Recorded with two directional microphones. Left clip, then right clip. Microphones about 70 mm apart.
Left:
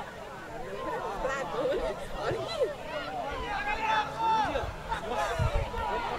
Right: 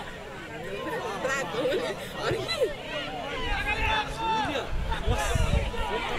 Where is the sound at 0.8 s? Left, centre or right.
Right.